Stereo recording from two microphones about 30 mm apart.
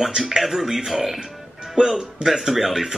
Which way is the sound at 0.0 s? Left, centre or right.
Centre.